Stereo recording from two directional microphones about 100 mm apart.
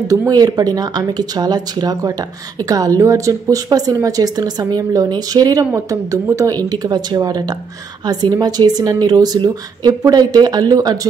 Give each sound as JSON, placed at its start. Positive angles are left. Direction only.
{"t": 0.3, "sound": "speech", "side_deg": -40}